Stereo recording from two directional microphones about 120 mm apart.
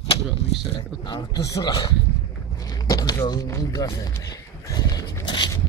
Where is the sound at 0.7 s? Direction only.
40° left (ahead or behind).